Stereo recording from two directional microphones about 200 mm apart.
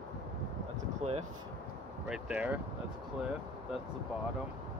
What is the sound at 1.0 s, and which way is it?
Speech, 35° right (ahead or behind).